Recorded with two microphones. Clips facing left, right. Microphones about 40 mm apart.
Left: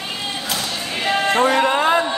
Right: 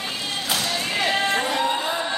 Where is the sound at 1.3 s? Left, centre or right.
Left.